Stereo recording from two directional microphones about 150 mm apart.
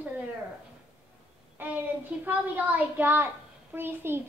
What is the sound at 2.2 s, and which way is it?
A woman's voice, 10° right (ahead or behind).